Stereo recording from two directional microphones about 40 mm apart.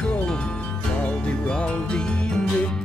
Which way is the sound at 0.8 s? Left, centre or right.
Left.